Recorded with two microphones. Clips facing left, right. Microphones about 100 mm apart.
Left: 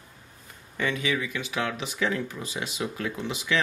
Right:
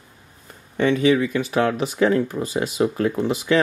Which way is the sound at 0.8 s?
35° right (ahead or behind).